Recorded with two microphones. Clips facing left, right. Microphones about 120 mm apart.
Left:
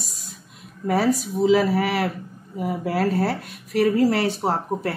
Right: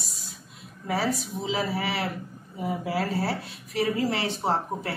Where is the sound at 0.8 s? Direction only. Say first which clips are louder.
Left 7 dB; 45° left (ahead or behind).